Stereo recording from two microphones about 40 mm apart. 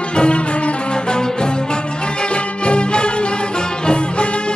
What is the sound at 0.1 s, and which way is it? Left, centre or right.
Music, left.